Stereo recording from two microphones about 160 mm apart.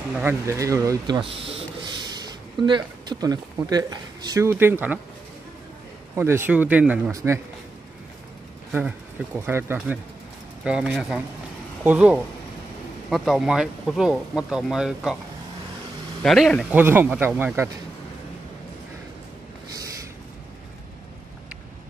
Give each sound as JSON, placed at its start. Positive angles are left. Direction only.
{"t": 0.1, "sound": "speech", "side_deg": -10}
{"t": 6.1, "sound": "speech", "side_deg": -15}
{"t": 7.1, "sound": "speech", "side_deg": -20}
{"t": 9.5, "sound": "speech", "side_deg": -15}
{"t": 16.2, "sound": "speech", "side_deg": 0}
{"t": 16.7, "sound": "speech", "side_deg": -10}